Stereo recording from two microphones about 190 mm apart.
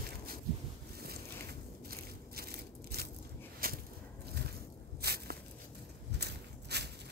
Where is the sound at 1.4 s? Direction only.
55° right (ahead or behind).